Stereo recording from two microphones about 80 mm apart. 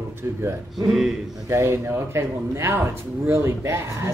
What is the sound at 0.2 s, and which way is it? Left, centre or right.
Speech, right.